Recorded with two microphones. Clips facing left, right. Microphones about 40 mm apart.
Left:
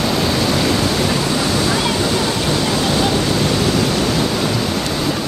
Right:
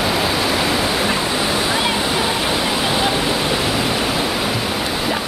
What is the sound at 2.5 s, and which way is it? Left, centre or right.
Pink noise, centre.